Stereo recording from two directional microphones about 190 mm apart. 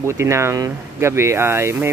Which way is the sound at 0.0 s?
15° right (ahead or behind).